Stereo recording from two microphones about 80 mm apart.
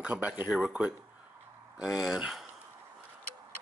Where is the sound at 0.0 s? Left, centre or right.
Centre.